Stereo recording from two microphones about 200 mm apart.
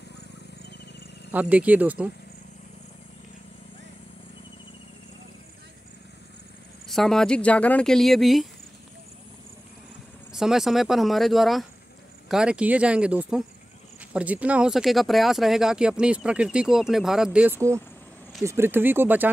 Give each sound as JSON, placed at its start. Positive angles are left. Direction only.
{"t": 1.3, "sound": "speech", "side_deg": -5}
{"t": 6.9, "sound": "speech", "side_deg": 0}
{"t": 10.3, "sound": "speech", "side_deg": 0}